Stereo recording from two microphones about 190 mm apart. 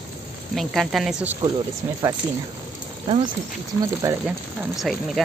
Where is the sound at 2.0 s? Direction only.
15° right (ahead or behind).